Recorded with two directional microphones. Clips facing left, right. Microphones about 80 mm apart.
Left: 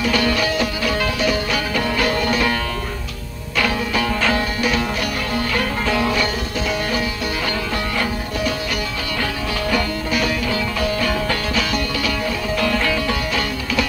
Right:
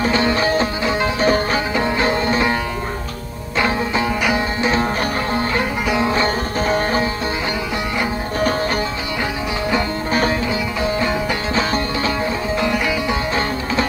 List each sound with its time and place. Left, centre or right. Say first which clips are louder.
0.0 s music: right 2 dB; right
3.5 s music: right 2 dB; right
10.8 s music: right 2 dB; right